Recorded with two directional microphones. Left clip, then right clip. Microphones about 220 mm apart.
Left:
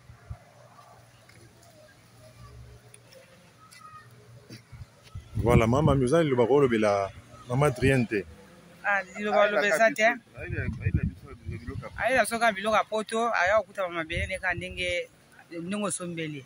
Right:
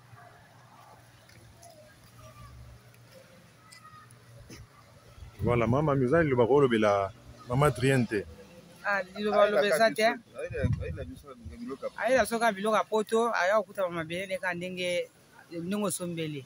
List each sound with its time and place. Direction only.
5.4 s speech: 30° left (ahead or behind); by 8.3 s 10° left (ahead or behind)
9.1 s a man's voice: 20° right (ahead or behind)
10.4 s a sound: 45° right (ahead or behind)
11.9 s speech: 15° right (ahead or behind)